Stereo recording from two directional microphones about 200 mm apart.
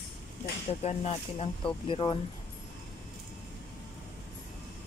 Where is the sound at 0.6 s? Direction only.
30° left (ahead or behind).